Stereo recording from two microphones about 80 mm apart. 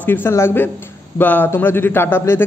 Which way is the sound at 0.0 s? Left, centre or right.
Left.